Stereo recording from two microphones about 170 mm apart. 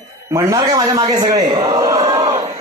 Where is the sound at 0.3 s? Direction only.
15° right (ahead or behind).